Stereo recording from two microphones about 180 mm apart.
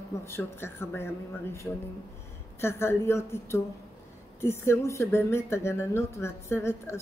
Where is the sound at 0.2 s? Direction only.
15° left (ahead or behind).